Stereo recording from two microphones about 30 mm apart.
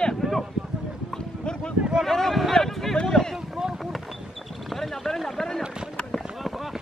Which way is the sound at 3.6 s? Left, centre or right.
Right.